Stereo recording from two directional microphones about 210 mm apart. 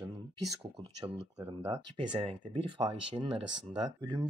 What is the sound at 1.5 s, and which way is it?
Speech, 20° right (ahead or behind).